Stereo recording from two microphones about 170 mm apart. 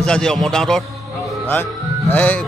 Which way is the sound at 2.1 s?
10° left (ahead or behind).